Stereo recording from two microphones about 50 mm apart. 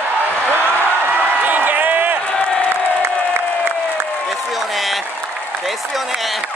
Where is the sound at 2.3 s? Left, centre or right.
Left.